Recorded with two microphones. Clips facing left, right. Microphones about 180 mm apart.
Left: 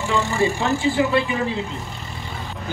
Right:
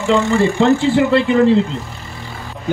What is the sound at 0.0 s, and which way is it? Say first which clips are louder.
Speech: right 6 dB; 65° right (ahead or behind).